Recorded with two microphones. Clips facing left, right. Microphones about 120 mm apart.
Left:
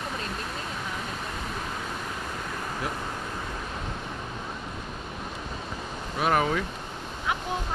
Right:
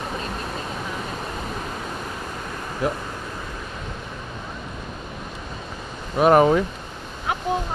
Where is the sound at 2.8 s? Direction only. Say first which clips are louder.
Right 11 dB; 45° right (ahead or behind).